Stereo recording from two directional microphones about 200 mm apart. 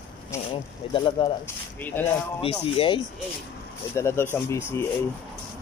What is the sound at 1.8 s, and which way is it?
Speech, 10° left (ahead or behind).